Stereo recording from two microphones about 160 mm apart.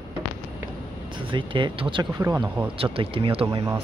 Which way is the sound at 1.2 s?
30° right (ahead or behind).